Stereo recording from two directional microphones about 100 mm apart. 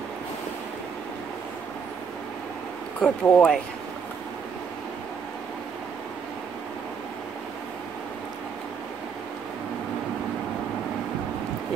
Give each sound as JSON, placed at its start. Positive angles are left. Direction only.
{"t": 3.0, "sound": "speech", "side_deg": 10}